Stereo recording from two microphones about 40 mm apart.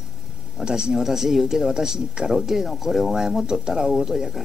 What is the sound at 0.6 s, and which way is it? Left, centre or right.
Speech, centre.